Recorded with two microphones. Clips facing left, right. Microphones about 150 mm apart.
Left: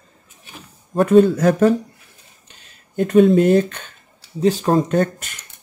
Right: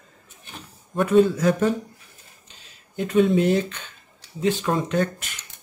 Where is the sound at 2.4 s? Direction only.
55° left (ahead or behind).